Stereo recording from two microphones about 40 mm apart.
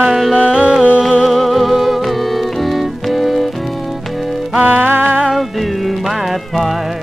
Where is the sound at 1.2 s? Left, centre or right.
Centre.